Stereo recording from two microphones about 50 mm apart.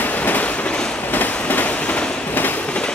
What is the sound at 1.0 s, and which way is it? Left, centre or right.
Fireworks, left.